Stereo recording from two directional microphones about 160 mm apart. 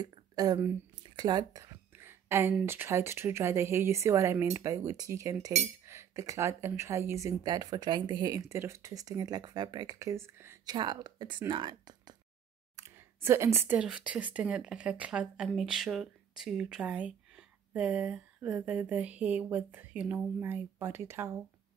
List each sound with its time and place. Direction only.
0.0 s speech: 25° right (ahead or behind)
1.1 s a sound: 25° right (ahead or behind)
2.6 s a woman's voice: 15° right (ahead or behind)
12.7 s speech: 15° right (ahead or behind)